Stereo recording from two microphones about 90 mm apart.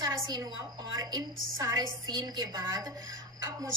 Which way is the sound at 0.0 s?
45° right (ahead or behind).